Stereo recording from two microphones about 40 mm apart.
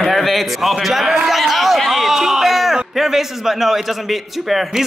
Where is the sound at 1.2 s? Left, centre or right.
Centre.